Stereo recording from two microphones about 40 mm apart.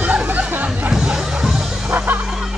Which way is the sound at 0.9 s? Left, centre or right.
Centre.